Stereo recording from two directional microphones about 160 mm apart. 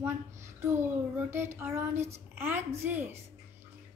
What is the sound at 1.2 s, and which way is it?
A woman's voice, 15° right (ahead or behind).